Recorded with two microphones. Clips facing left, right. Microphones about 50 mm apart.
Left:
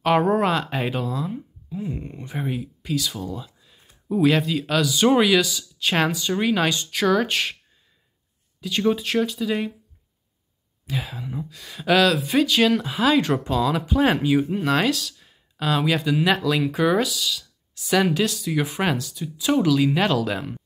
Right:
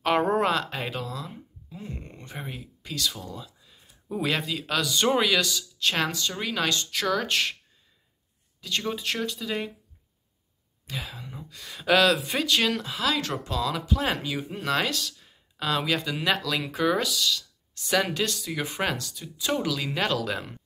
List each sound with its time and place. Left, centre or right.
0.0 s speech: centre
8.5 s speech: centre
10.9 s speech: centre
12.8 s speech: left; by 20.6 s centre